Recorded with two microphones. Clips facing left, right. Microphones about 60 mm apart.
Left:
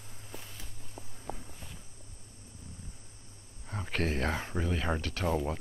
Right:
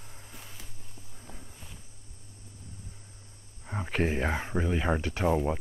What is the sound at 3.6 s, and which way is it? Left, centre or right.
Speech, centre.